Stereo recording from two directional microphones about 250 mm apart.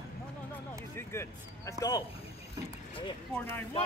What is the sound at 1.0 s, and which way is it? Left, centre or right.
Speech, centre.